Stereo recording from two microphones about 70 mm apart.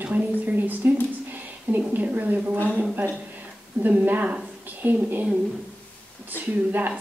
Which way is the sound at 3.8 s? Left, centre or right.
Right.